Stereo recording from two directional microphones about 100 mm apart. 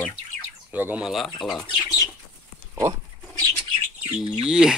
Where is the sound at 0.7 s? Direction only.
20° right (ahead or behind).